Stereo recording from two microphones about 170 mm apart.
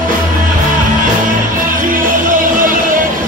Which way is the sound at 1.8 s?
50° right (ahead or behind).